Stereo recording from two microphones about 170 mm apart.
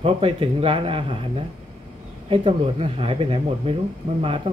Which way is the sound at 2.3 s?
30° right (ahead or behind).